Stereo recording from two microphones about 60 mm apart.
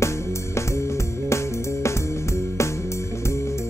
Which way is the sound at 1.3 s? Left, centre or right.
Left.